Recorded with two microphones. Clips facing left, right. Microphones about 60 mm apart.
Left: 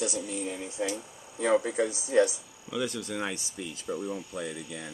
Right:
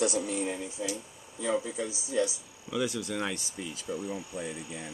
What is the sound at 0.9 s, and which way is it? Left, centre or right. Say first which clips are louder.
Speech: left 3 dB; left.